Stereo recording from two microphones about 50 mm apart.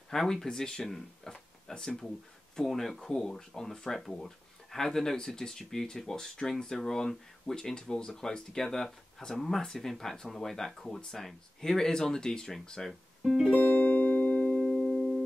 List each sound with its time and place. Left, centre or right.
0.1 s speech: centre
1.3 s a sound: centre
2.5 s speech: centre
13.2 s music: centre
13.5 s music: left; by 15.0 s centre